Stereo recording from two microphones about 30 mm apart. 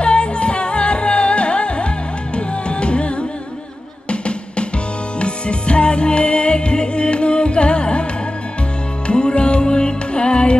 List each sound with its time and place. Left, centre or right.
0.0 s music: left
4.1 s drum: left
5.2 s music: left